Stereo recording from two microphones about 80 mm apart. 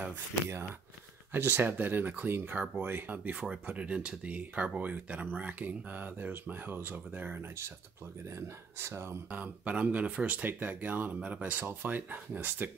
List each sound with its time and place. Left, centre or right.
0.0 s speech: right
8.4 s speech: right
9.3 s speech: centre